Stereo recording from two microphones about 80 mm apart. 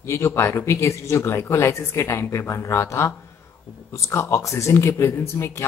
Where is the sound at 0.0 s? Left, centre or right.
Left.